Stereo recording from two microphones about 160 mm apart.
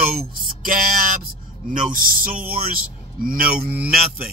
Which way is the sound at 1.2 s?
60° right (ahead or behind).